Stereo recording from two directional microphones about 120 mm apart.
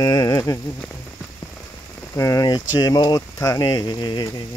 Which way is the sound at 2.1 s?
25° left (ahead or behind).